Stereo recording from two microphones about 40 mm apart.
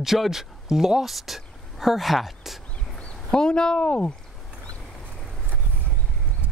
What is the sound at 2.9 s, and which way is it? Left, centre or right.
Speech, left.